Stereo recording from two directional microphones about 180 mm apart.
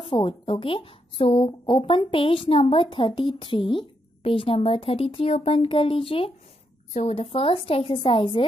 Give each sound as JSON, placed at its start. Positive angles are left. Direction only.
{"t": 0.0, "sound": "a woman's voice", "side_deg": 30}